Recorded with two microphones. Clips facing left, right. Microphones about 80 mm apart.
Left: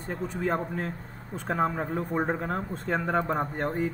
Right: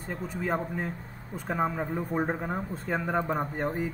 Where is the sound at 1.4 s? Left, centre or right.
Centre.